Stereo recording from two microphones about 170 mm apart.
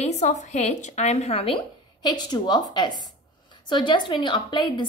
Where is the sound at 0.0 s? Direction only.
45° left (ahead or behind).